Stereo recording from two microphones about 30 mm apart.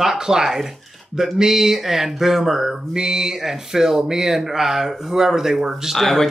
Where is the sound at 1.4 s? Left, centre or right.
Centre.